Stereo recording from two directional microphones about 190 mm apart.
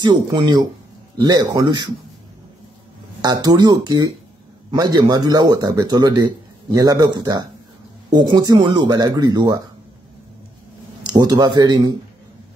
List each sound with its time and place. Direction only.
0.0 s a man's voice: 25° right (ahead or behind)
3.2 s a man's voice: 20° right (ahead or behind)
11.1 s a man's voice: 20° right (ahead or behind)